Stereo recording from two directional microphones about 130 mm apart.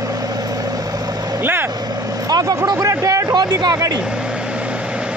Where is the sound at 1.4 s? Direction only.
15° right (ahead or behind).